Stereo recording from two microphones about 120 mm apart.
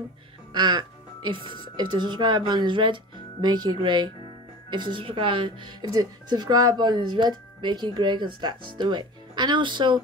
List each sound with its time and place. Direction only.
0.5 s speech: 40° right (ahead or behind)
1.4 s a woman's voice: 45° left (ahead or behind)
1.8 s speech: 40° right (ahead or behind)